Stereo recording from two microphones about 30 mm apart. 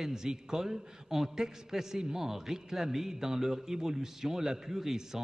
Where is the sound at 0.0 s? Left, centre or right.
Centre.